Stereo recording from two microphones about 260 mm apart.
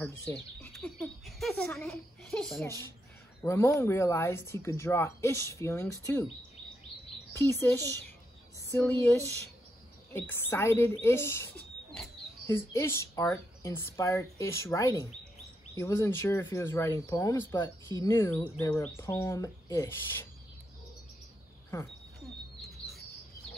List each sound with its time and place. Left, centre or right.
0.0 s speech: centre
7.3 s speech: centre
8.6 s a sound: centre
10.1 s speech: centre
22.8 s chirp: left